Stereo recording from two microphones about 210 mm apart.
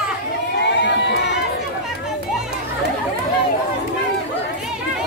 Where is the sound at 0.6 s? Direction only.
55° left (ahead or behind).